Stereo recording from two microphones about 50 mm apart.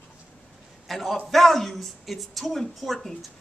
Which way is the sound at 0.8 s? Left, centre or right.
Centre.